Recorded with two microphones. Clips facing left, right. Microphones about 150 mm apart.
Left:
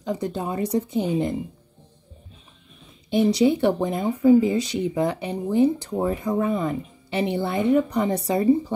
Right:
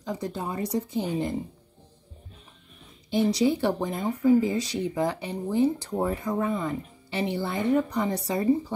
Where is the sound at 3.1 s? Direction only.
20° left (ahead or behind).